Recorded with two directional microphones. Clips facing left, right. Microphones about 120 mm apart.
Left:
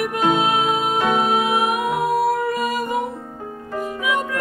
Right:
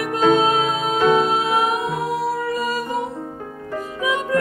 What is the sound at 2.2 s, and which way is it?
Music, 55° left (ahead or behind).